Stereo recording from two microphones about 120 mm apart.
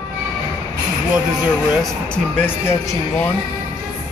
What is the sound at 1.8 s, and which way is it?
Speech, 10° left (ahead or behind).